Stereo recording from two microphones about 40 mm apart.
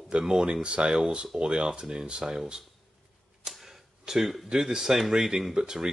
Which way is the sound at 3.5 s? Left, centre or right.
Centre.